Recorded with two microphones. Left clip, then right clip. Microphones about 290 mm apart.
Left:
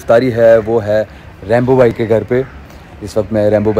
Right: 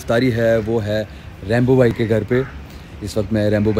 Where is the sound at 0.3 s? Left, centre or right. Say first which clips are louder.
Left 8 dB; left.